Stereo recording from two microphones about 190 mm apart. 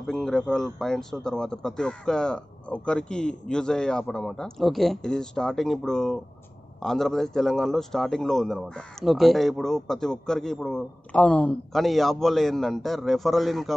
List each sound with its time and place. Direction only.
0.0 s a man's voice: centre (ahead or behind)